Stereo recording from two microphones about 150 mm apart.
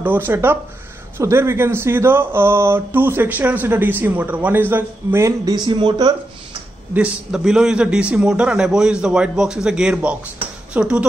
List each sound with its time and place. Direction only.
0.0 s speech: 10° right (ahead or behind); by 6.1 s 30° right (ahead or behind)
6.9 s a man's voice: 5° right (ahead or behind)